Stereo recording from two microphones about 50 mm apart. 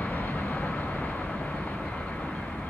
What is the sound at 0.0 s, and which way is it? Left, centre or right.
Vehicle, left.